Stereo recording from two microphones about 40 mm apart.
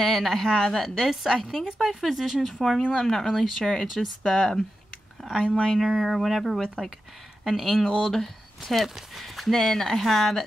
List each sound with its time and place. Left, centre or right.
0.0 s speech: centre
1.0 s speech: centre
1.3 s speech: centre
1.7 s speech: centre
5.8 s speech: centre
7.8 s speech: centre
8.8 s speech: centre